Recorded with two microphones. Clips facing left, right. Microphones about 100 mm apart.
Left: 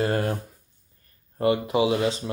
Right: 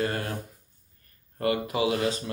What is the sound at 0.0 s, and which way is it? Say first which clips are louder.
Speech: left 5 dB; 35° left (ahead or behind).